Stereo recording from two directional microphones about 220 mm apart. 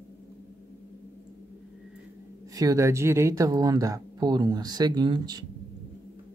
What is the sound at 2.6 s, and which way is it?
Speech, 15° right (ahead or behind).